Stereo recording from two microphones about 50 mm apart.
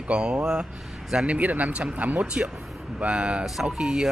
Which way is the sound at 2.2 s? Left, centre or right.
Right.